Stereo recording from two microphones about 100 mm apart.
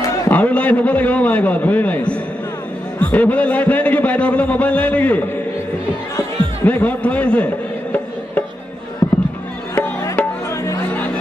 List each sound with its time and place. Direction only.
0.3 s a man's voice: 15° left (ahead or behind)
6.6 s music: 15° left (ahead or behind)
9.8 s music: 25° left (ahead or behind)